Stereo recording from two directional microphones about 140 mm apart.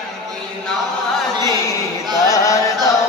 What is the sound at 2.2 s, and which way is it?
Chant, 25° left (ahead or behind).